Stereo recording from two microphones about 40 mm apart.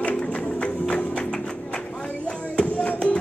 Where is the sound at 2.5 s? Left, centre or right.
Left.